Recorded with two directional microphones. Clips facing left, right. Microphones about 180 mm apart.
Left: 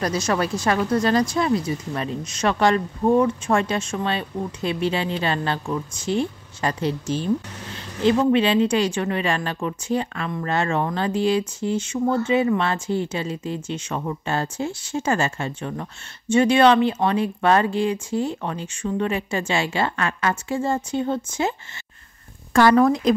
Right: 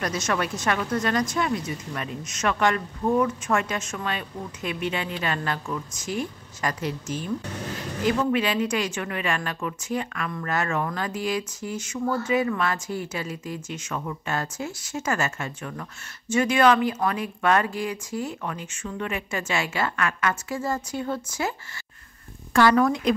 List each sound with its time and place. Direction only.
0.0 s a woman's voice: 35° left (ahead or behind)
22.5 s speech: 40° left (ahead or behind)